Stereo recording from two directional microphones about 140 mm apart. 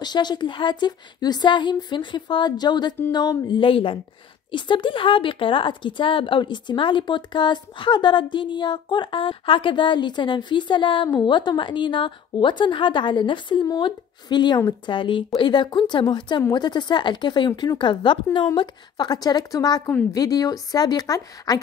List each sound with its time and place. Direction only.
0.0 s a woman's voice: 30° left (ahead or behind)